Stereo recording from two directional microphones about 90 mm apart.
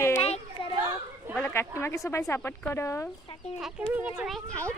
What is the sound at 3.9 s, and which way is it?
Speech, 15° right (ahead or behind).